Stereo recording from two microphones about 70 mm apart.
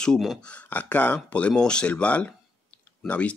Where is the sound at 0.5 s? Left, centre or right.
Left.